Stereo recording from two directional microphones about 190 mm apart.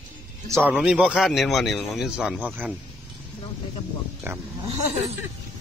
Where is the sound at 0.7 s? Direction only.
5° right (ahead or behind).